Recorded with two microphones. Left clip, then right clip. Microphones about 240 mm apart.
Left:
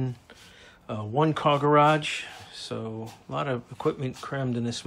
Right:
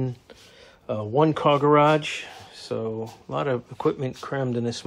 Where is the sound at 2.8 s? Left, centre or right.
Right.